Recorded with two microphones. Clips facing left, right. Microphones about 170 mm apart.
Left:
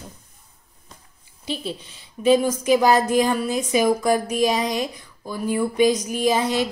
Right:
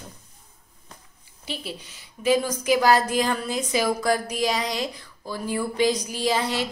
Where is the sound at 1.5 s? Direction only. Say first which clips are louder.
Left 5 dB; 25° left (ahead or behind).